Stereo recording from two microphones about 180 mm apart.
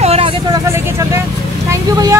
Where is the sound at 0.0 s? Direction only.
35° right (ahead or behind).